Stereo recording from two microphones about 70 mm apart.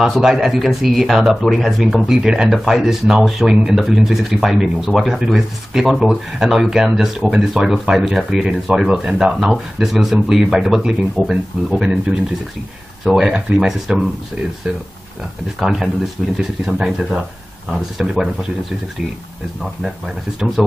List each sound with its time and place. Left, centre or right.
0.0 s speech: centre
11.8 s speech: centre
13.0 s speech: centre
15.6 s speech: centre
20.6 s speech: centre